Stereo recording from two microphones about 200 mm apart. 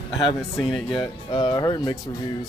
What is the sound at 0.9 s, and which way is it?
Speech, 25° left (ahead or behind).